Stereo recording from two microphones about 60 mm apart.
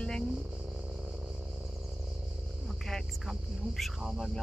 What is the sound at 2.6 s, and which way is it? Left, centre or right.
Speech, centre.